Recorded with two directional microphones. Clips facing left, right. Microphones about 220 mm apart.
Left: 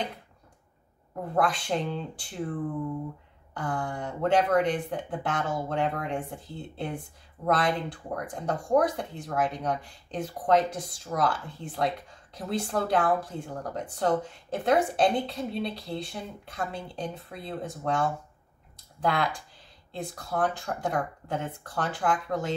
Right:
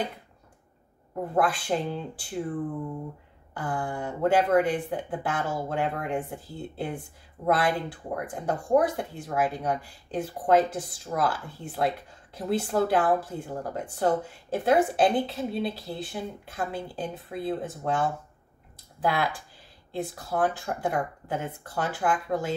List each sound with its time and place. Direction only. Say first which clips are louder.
1.3 s speech: right 1 dB; 5° right (ahead or behind)
3.5 s speech: right 1 dB; 5° right (ahead or behind)